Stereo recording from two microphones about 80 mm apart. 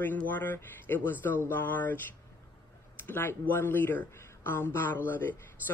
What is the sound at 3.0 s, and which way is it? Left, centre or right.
Speech, left.